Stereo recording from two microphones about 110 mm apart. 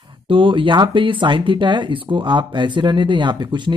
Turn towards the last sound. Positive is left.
turn(degrees=-45)  # may be behind; listen again after turning